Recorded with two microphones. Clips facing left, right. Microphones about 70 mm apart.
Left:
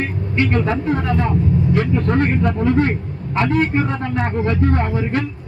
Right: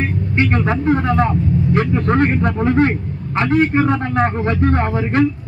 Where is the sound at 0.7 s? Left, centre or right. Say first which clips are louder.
Right 3 dB; right.